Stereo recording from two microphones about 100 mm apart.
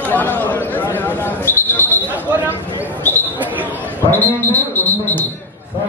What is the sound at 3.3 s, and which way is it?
Basketball bounce, 15° right (ahead or behind).